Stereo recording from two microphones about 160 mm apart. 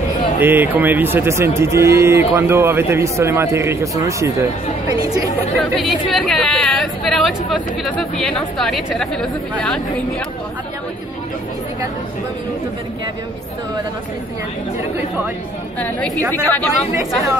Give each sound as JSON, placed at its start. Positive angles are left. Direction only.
{"t": 0.4, "sound": "speech", "side_deg": -10}
{"t": 5.6, "sound": "a woman's voice", "side_deg": 0}
{"t": 15.8, "sound": "a woman's voice", "side_deg": 10}